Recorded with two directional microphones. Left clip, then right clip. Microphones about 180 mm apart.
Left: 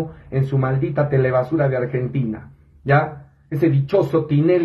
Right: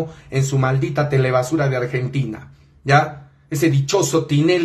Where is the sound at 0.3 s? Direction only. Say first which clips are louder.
Right 2 dB; 15° right (ahead or behind).